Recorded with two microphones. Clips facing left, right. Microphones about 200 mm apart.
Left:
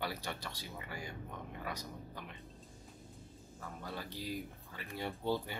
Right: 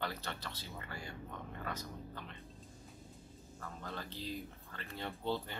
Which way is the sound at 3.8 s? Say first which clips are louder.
Left 1 dB; 10° left (ahead or behind).